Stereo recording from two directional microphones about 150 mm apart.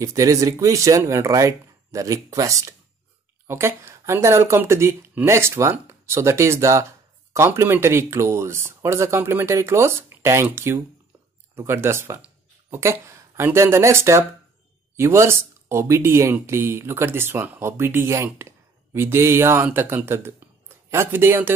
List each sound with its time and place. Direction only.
0.0 s speech: 20° right (ahead or behind)